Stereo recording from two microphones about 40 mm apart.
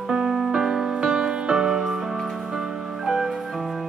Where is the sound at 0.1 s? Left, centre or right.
Centre.